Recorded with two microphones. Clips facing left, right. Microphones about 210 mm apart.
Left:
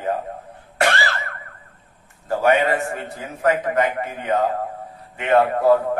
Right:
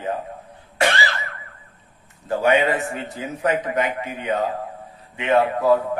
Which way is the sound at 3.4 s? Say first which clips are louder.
Left 3 dB; 50° left (ahead or behind).